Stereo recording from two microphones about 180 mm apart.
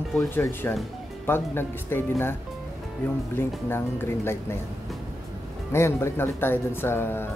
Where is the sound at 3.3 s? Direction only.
10° left (ahead or behind).